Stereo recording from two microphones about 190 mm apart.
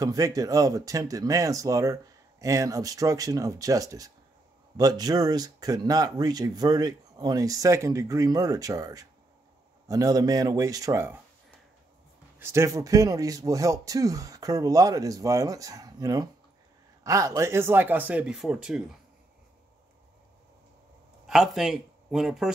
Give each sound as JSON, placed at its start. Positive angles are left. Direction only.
{"t": 0.0, "sound": "speech", "side_deg": -20}
{"t": 12.4, "sound": "speech", "side_deg": -15}
{"t": 21.3, "sound": "speech", "side_deg": 0}